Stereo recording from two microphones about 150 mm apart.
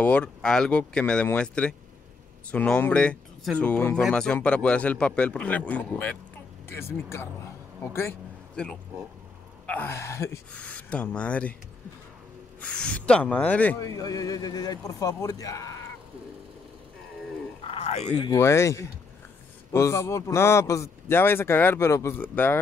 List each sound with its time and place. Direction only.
0.0 s speech: 10° left (ahead or behind)
9.7 s speech: 15° left (ahead or behind)
10.5 s speech: 10° left (ahead or behind)
12.5 s speech: 5° left (ahead or behind)
13.7 s speech: 25° left (ahead or behind)
17.6 s a sound: 45° left (ahead or behind)
18.3 s speech: 20° left (ahead or behind)